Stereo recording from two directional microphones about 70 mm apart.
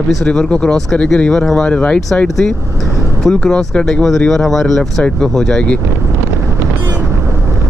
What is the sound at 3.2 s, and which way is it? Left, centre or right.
Speech, centre.